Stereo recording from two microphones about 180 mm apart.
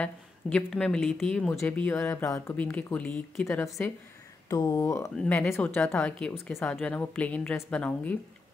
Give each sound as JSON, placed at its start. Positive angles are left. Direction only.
{"t": 0.0, "sound": "a woman's voice", "side_deg": 5}
{"t": 5.1, "sound": "a woman's voice", "side_deg": 5}